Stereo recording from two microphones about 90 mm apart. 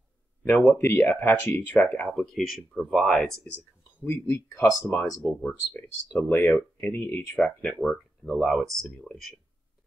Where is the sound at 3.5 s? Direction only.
20° left (ahead or behind).